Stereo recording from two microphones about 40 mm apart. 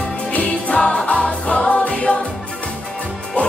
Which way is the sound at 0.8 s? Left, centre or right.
Centre.